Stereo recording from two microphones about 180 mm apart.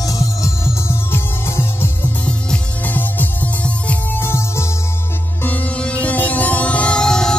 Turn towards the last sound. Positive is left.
turn(degrees=5)  # may be behind; listen again after turning